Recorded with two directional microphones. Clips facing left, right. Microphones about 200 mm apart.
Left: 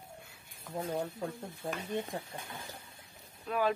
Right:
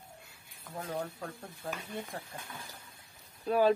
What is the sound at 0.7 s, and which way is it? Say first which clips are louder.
Speech: left 2 dB; 25° left (ahead or behind).